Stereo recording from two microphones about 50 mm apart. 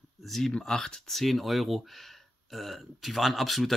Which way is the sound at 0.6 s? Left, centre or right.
Centre.